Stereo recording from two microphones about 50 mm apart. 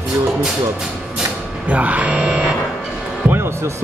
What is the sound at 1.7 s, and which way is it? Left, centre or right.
Speech, right.